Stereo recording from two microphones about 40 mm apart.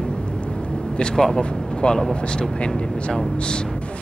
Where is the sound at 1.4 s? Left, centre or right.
Left.